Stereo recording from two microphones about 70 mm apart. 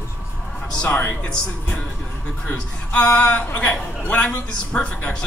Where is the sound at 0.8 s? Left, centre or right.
Left.